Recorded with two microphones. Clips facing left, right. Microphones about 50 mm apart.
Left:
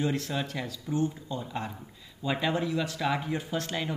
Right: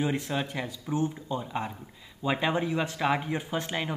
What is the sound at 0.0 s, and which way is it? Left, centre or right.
Speech, centre.